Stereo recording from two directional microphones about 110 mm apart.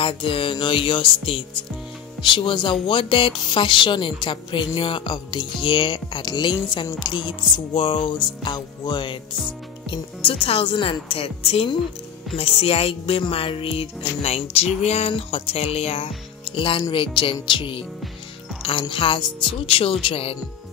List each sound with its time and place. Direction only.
0.0 s music: 50° left (ahead or behind)
12.4 s speech: 60° left (ahead or behind)
16.4 s speech: 50° left (ahead or behind)
16.9 s music: 50° left (ahead or behind)